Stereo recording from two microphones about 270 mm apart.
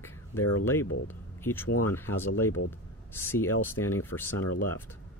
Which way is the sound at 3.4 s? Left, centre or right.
Left.